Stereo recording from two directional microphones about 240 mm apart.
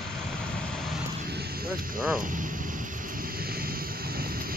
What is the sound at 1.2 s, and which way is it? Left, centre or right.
Vehicle, right.